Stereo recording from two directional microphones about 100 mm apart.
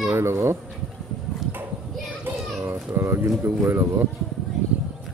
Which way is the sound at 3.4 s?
25° right (ahead or behind).